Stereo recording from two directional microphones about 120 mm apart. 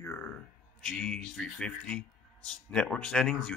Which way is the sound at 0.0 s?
10° left (ahead or behind).